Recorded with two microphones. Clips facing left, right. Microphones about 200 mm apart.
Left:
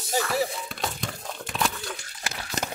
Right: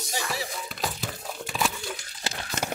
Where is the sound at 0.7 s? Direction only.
Centre (ahead or behind).